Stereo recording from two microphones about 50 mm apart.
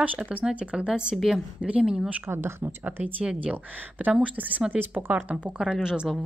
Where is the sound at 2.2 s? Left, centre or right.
Right.